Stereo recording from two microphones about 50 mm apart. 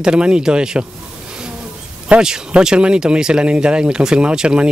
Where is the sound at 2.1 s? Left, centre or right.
Right.